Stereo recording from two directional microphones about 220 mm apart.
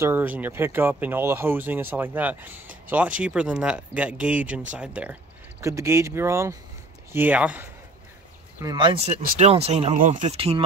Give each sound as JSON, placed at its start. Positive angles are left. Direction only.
{"t": 0.0, "sound": "speech", "side_deg": -10}
{"t": 8.5, "sound": "speech", "side_deg": -20}